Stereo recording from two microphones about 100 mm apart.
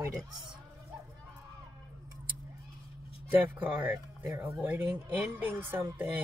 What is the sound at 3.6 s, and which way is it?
Speech, 20° right (ahead or behind).